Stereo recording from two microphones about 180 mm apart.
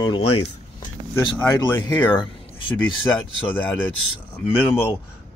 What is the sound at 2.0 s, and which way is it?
Speech, 25° left (ahead or behind).